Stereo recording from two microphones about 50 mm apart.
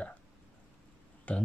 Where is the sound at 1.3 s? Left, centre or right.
Left.